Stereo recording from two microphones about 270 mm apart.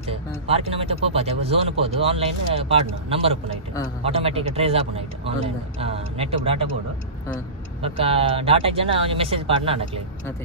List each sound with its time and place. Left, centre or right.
0.0 s speech: right
7.8 s speech: right